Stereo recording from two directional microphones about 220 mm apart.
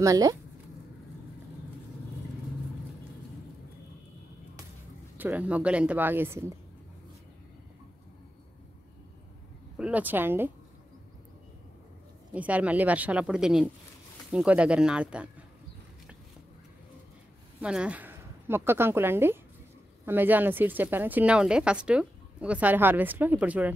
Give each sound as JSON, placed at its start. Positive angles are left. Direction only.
{"t": 0.0, "sound": "speech", "side_deg": -15}
{"t": 5.1, "sound": "speech", "side_deg": -10}
{"t": 9.8, "sound": "speech", "side_deg": -5}
{"t": 12.4, "sound": "speech", "side_deg": -5}
{"t": 17.6, "sound": "speech", "side_deg": -5}